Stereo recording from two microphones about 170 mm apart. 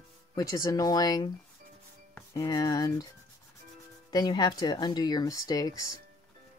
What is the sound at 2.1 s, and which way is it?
Music, 20° left (ahead or behind).